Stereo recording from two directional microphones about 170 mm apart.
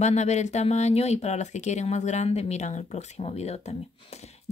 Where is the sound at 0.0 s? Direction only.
40° left (ahead or behind).